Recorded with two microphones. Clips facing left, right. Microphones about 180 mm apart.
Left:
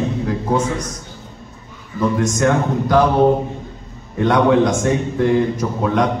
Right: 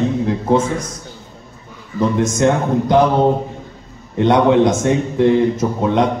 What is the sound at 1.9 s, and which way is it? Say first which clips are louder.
A man's voice: right 2 dB; 25° right (ahead or behind).